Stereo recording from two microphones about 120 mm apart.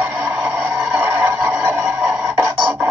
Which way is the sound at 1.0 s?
15° right (ahead or behind).